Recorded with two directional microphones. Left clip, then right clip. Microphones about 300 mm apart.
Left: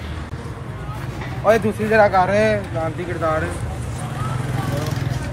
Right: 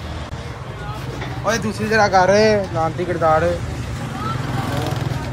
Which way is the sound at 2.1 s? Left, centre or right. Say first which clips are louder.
Right 3 dB; right.